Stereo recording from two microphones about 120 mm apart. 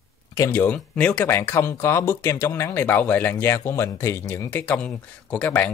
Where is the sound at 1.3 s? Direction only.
20° left (ahead or behind).